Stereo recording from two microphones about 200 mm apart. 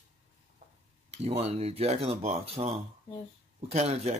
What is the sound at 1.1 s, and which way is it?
Speech, 30° right (ahead or behind).